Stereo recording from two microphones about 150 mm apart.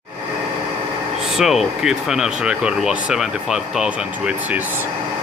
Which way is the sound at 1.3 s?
Centre (ahead or behind).